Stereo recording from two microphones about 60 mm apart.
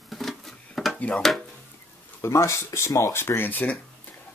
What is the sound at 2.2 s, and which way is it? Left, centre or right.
Speech, left.